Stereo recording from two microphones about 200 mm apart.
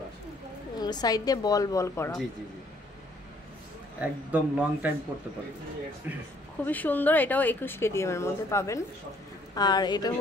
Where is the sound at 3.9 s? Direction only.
5° right (ahead or behind).